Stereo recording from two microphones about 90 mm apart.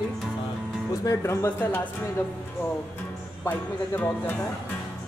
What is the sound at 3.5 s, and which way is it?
Speech, 20° left (ahead or behind).